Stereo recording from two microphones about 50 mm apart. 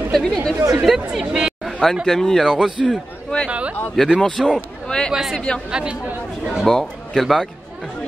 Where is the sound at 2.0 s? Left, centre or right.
Centre.